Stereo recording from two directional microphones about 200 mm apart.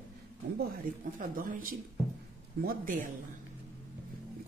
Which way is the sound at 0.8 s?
45° right (ahead or behind).